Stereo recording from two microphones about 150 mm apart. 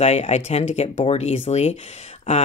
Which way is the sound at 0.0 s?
45° left (ahead or behind).